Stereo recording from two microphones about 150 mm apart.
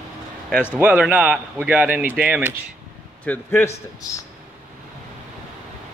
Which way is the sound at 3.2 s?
10° left (ahead or behind).